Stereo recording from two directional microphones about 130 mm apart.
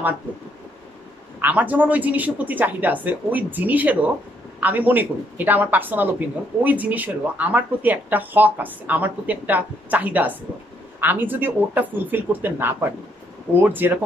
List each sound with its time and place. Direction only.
1.4 s a woman's voice: 10° right (ahead or behind)